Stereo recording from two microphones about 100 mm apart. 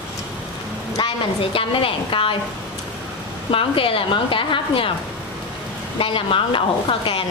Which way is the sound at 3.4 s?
65° left (ahead or behind).